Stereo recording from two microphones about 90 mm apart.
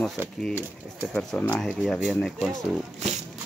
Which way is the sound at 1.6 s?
5° left (ahead or behind).